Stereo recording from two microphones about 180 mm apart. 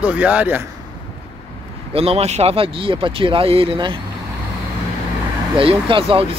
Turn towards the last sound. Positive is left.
turn(degrees=-30)  # may be behind; listen again after turning